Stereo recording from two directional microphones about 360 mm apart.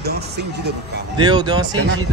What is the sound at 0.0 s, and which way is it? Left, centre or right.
Speech, right.